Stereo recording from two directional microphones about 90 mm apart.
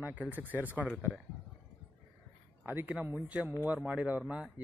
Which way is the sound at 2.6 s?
20° right (ahead or behind).